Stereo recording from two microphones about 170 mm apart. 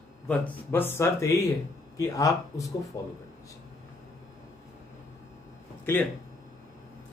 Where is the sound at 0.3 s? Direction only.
15° left (ahead or behind).